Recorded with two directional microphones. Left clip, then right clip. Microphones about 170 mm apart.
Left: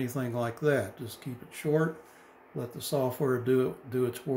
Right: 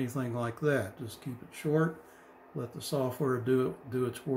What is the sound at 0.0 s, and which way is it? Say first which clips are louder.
Speech: left 2 dB; 5° left (ahead or behind).